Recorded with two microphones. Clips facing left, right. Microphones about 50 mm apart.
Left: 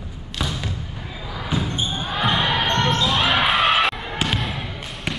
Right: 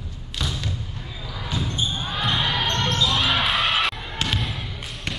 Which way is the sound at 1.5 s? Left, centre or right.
Centre.